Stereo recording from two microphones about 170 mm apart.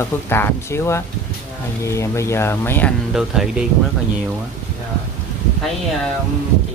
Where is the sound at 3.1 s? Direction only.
Centre (ahead or behind).